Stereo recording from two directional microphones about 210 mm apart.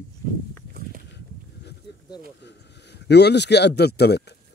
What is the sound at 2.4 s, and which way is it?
Speech, 55° left (ahead or behind).